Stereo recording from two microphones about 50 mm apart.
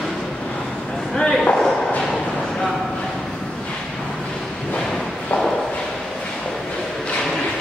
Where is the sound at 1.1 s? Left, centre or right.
Centre.